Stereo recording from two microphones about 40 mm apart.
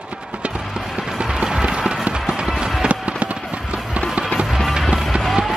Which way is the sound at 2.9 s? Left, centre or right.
Right.